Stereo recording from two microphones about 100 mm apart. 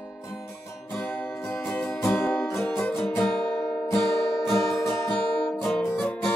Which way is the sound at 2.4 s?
25° left (ahead or behind).